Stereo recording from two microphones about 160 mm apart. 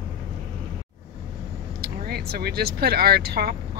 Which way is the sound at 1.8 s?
75° right (ahead or behind).